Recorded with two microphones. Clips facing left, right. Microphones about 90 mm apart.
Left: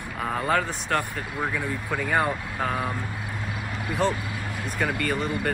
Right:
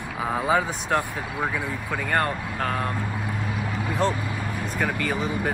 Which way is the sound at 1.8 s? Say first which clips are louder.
Even; 10° left (ahead or behind).